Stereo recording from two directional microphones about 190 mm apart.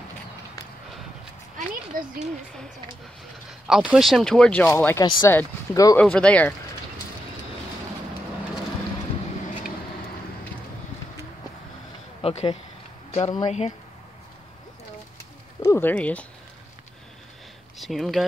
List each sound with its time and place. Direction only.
1.9 s speech: 45° right (ahead or behind)
3.6 s speech: 5° right (ahead or behind)
12.2 s speech: 30° left (ahead or behind)
15.6 s speech: 10° left (ahead or behind)
17.7 s speech: centre (ahead or behind)